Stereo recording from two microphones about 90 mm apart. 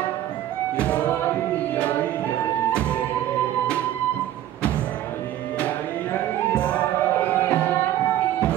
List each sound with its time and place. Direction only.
0.7 s music: 15° left (ahead or behind)
6.5 s music: 10° left (ahead or behind)